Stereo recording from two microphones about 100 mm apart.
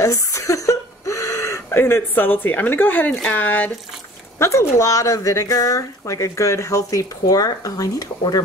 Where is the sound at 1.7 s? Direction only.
20° left (ahead or behind).